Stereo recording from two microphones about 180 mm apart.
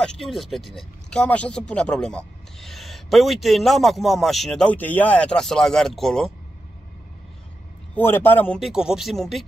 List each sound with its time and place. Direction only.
0.0 s speech: 5° left (ahead or behind)
7.9 s a man's voice: 10° left (ahead or behind)
8.5 s speech: centre (ahead or behind)